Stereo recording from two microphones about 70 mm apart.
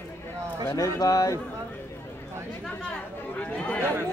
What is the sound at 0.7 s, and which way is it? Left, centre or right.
Speech, left.